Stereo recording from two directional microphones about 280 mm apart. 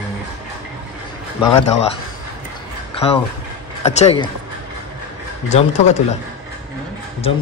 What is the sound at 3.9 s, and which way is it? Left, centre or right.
Speech, left.